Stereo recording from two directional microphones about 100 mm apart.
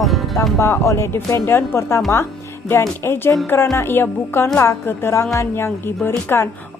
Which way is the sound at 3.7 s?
25° left (ahead or behind).